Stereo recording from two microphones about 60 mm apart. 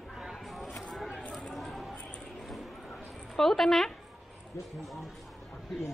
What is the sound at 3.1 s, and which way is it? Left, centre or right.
A woman's voice, centre.